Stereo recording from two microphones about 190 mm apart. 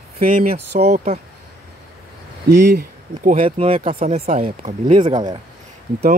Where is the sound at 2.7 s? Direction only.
45° right (ahead or behind).